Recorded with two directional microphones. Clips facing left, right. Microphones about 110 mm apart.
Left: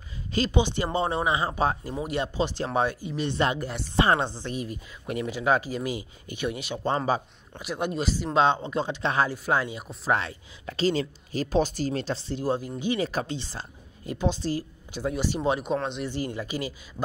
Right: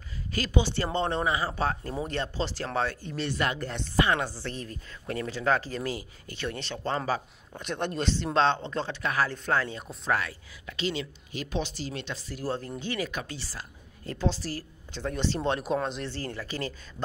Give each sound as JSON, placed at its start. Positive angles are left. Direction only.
{"t": 0.3, "sound": "speech", "side_deg": 20}
{"t": 3.3, "sound": "chopping", "side_deg": 25}
{"t": 4.3, "sound": "speech", "side_deg": 15}
{"t": 7.5, "sound": "speech", "side_deg": 5}
{"t": 9.0, "sound": "chopping", "side_deg": 25}
{"t": 9.3, "sound": "speech", "side_deg": 15}
{"t": 10.0, "sound": "chopping", "side_deg": 25}
{"t": 10.7, "sound": "speech", "side_deg": 40}
{"t": 12.4, "sound": "speech", "side_deg": 15}
{"t": 13.0, "sound": "speech", "side_deg": 35}
{"t": 13.3, "sound": "speech", "side_deg": 25}
{"t": 16.1, "sound": "speech", "side_deg": 15}